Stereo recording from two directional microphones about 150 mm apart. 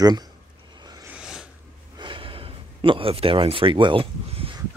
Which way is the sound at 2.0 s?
35° right (ahead or behind).